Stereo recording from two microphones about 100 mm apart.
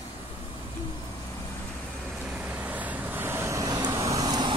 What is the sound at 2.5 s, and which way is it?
Vehicle, 15° right (ahead or behind).